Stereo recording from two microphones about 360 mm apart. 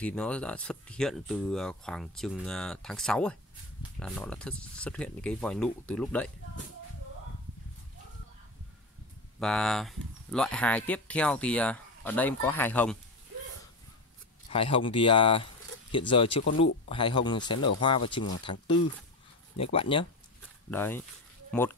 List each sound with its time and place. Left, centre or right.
0.0 s speech: centre
9.4 s speech: centre
14.5 s speech: centre